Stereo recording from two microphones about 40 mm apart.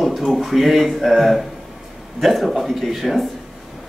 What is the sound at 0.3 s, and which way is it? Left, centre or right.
Speech, centre.